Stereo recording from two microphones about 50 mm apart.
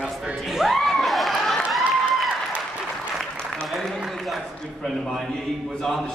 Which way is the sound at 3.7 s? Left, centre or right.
Centre.